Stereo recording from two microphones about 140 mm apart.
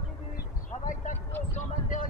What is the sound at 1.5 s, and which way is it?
Vehicle, 70° left (ahead or behind).